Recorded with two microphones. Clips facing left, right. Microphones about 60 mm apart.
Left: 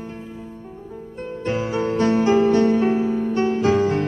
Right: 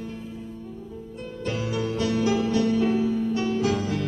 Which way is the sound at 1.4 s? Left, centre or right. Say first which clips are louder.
Left 5 dB; left.